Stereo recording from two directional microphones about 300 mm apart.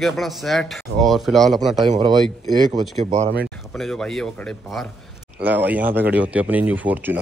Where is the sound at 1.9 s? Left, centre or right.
Centre.